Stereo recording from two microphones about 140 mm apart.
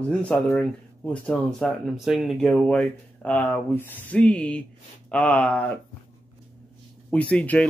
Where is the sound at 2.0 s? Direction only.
5° right (ahead or behind).